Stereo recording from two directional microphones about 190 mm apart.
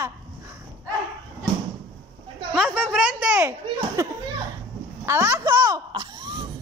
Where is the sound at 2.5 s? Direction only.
Centre (ahead or behind).